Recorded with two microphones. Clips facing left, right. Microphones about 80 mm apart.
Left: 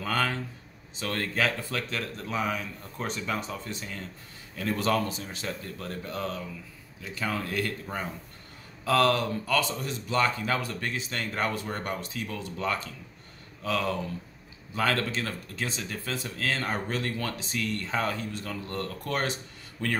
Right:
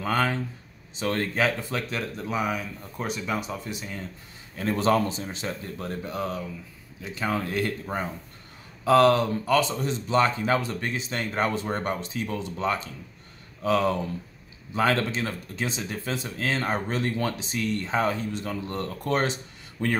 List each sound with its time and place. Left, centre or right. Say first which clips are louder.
0.0 s speech: right 3 dB; right
4.6 s speech: right 4 dB; right